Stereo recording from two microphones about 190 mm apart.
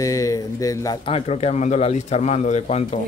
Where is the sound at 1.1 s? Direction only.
35° left (ahead or behind).